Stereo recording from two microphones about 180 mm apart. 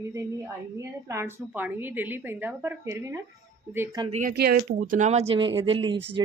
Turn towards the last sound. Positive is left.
turn(degrees=-30)  # may be behind; listen again after turning